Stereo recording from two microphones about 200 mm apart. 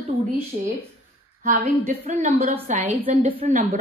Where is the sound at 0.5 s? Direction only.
40° right (ahead or behind).